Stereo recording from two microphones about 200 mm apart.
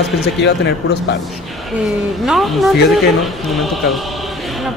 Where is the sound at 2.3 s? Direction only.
Centre (ahead or behind).